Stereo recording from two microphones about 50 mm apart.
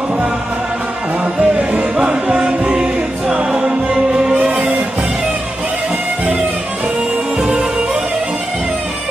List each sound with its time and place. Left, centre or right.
1.4 s music: right
7.4 s music: centre